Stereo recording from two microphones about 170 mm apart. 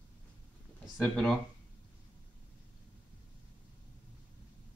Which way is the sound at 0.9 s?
5° left (ahead or behind).